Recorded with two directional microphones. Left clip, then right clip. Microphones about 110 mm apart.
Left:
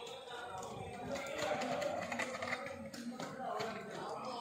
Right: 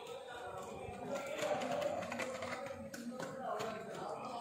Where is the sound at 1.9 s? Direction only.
5° left (ahead or behind).